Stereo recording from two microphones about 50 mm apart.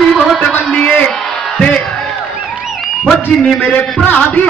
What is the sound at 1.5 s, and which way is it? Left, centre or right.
Crowd, centre.